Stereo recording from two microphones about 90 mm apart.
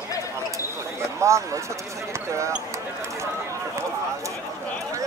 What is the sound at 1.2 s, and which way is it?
Speech, 35° right (ahead or behind).